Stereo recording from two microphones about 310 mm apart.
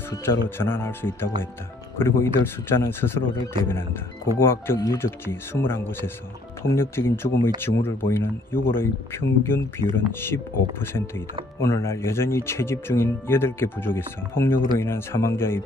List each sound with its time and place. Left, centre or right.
0.1 s speech: centre
8.5 s speech: left
8.7 s speech: centre